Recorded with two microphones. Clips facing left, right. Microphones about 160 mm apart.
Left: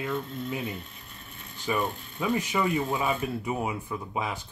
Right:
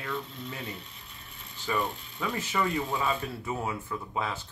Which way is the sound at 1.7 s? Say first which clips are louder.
Left 2 dB; 15° left (ahead or behind).